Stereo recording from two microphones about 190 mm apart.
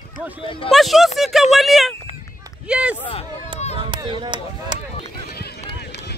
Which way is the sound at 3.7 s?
25° right (ahead or behind).